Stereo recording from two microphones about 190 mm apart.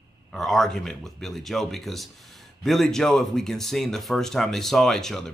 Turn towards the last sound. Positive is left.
turn(degrees=5)  # may be behind; listen again after turning